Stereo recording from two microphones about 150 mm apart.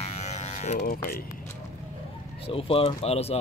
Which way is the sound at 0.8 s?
80° left.